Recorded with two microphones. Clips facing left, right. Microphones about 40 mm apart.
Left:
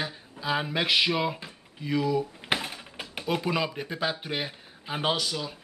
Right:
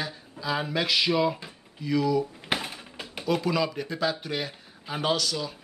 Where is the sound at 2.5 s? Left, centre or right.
Centre.